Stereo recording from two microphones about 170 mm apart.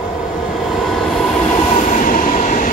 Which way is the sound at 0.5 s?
Centre (ahead or behind).